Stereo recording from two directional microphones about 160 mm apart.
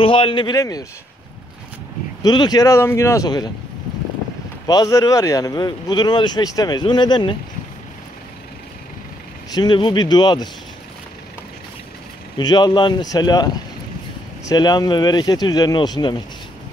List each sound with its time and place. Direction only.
0.0 s speech: 30° left (ahead or behind)
2.2 s speech: 25° left (ahead or behind)
4.6 s speech: 20° left (ahead or behind)
9.5 s speech: 25° left (ahead or behind)
12.4 s speech: 25° left (ahead or behind)